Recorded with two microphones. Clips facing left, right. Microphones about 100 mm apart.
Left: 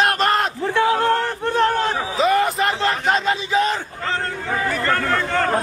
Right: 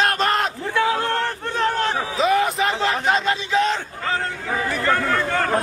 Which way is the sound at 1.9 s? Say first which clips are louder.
Left 1 dB; centre (ahead or behind).